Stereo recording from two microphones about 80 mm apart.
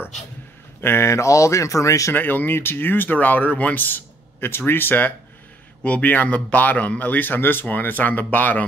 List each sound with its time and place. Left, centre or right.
0.7 s speech: left
2.1 s speech: left